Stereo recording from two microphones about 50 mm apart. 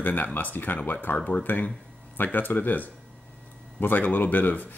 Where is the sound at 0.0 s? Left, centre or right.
Left.